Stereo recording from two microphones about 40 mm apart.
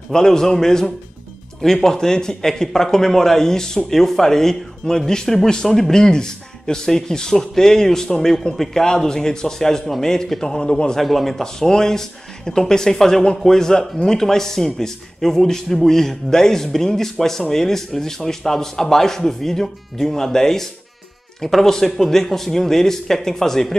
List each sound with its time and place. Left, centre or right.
0.1 s speech: centre
11.0 s speech: centre